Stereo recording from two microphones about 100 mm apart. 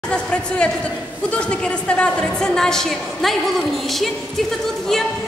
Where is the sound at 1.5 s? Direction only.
10° left (ahead or behind).